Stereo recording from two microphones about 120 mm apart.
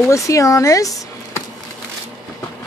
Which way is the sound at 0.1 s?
25° left (ahead or behind).